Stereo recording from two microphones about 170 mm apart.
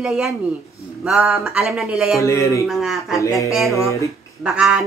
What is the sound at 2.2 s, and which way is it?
Speech, 15° left (ahead or behind).